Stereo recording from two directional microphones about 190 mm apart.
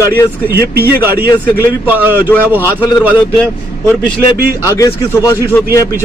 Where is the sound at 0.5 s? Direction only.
55° right (ahead or behind).